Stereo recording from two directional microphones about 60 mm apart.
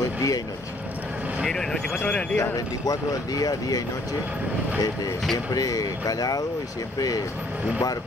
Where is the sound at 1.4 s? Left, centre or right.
Centre.